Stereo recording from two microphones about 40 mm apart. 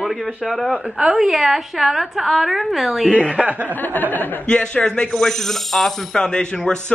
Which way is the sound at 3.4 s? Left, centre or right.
Right.